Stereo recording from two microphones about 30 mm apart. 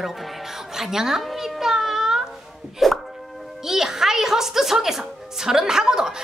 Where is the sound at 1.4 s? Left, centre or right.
Centre.